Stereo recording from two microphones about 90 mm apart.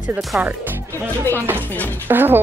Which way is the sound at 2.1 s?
25° right (ahead or behind).